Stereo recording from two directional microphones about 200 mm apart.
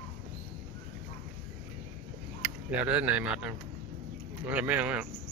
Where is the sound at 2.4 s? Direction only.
5° right (ahead or behind).